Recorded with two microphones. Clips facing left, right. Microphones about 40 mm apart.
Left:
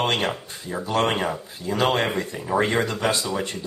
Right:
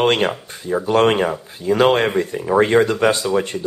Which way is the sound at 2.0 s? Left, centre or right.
Centre.